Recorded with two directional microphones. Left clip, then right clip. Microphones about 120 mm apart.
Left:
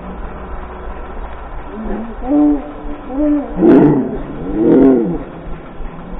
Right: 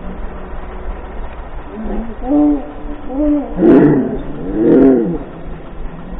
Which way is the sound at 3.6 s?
20° left (ahead or behind).